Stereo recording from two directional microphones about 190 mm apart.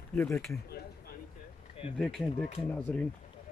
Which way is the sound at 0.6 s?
55° left (ahead or behind).